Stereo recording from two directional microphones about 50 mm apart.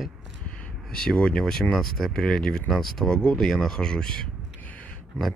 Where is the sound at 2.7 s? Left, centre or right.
Centre.